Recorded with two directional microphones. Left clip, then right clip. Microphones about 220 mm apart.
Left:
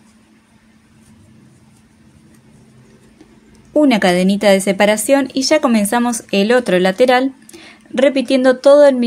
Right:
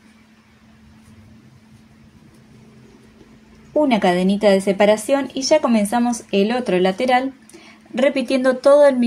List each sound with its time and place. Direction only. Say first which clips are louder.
3.7 s a woman's voice: left 4 dB; 30° left (ahead or behind)